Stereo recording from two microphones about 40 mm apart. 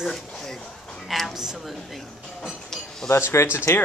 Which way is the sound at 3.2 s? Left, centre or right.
Left.